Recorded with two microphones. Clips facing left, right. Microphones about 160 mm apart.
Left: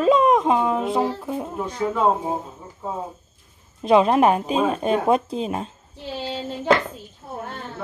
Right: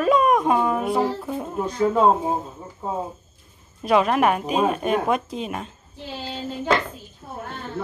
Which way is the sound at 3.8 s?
30° left (ahead or behind).